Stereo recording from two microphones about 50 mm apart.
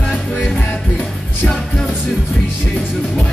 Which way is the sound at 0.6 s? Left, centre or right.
Left.